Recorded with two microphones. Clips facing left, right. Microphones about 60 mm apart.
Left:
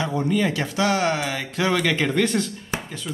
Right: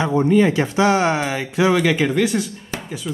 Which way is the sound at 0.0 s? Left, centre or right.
Right.